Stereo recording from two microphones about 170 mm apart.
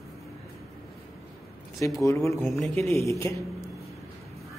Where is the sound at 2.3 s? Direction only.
Centre (ahead or behind).